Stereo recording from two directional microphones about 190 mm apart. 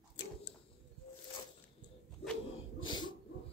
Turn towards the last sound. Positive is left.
turn(degrees=25)  # may be behind; listen again after turning